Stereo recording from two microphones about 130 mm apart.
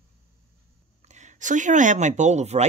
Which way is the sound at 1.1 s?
70° right (ahead or behind).